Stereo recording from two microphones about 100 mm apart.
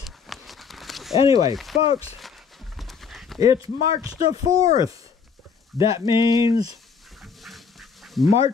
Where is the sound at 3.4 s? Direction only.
30° right (ahead or behind).